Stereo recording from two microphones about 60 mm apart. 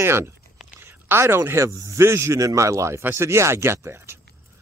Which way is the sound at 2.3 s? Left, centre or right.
Right.